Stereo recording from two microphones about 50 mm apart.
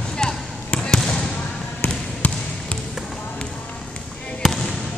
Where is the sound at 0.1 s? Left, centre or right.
Centre.